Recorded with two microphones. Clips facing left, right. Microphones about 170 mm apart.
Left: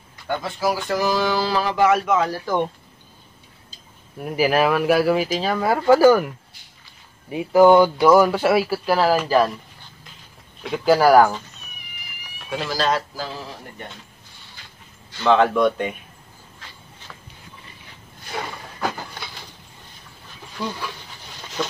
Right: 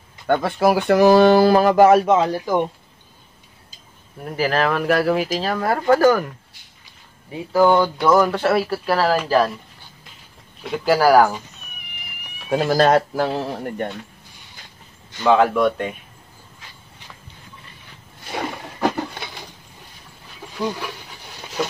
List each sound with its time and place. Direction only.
0.3 s speech: 60° right (ahead or behind)
2.0 s speech: 25° right (ahead or behind)
4.2 s speech: 10° left (ahead or behind)
10.6 s speech: centre (ahead or behind)
12.4 s speech: 50° right (ahead or behind)
15.0 s speech: 15° right (ahead or behind)